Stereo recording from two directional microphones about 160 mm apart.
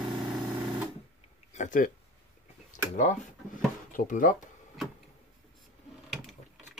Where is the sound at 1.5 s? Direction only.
50° left (ahead or behind).